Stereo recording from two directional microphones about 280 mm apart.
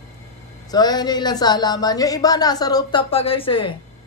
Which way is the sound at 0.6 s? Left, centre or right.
Centre.